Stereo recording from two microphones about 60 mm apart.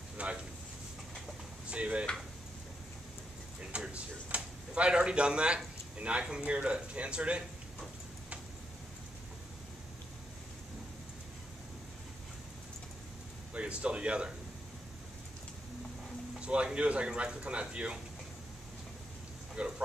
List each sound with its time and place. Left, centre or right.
0.2 s speech: right
1.7 s speech: right
3.7 s speech: right
13.5 s speech: centre
16.3 s speech: centre
19.6 s speech: centre